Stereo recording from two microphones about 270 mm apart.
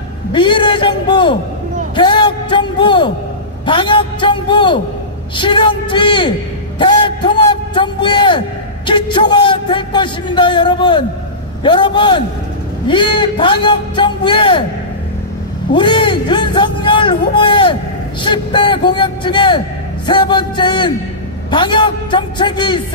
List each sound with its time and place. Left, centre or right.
0.3 s a man's voice: centre
15.7 s a man's voice: centre